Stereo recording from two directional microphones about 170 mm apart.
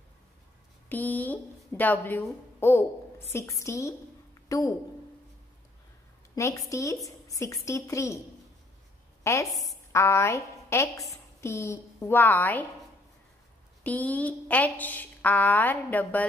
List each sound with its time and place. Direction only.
0.8 s a woman's voice: 10° left (ahead or behind)
6.3 s a woman's voice: 20° left (ahead or behind)
9.2 s a woman's voice: 15° left (ahead or behind)
9.5 s a woman's voice: centre (ahead or behind)
9.9 s a woman's voice: 15° left (ahead or behind)
13.8 s a woman's voice: 10° left (ahead or behind)